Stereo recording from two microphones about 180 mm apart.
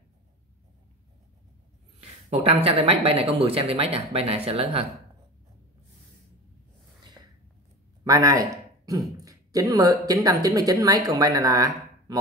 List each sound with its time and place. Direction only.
2.0 s speech: 35° right (ahead or behind)
8.0 s a woman's voice: 20° right (ahead or behind)